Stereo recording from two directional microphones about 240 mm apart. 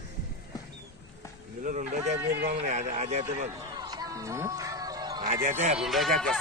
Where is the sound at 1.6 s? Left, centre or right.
Right.